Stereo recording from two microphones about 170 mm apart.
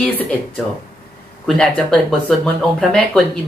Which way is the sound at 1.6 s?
5° left (ahead or behind).